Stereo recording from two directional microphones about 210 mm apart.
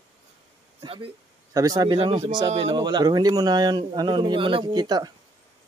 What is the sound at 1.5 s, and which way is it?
Speech, 15° right (ahead or behind).